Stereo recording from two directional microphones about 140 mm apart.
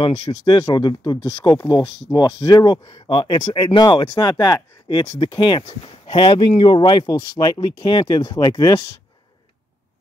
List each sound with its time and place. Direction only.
0.0 s speech: 30° left (ahead or behind)